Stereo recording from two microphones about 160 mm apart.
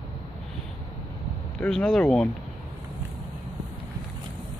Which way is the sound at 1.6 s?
5° left (ahead or behind).